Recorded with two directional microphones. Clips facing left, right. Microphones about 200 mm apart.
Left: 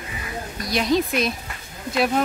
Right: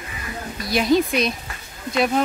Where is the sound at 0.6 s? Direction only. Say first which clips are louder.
Right 3 dB; 5° right (ahead or behind).